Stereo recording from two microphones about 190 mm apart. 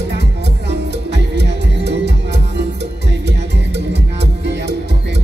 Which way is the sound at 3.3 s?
65° right (ahead or behind).